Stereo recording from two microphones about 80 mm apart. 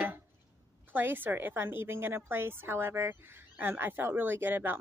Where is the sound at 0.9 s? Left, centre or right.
Right.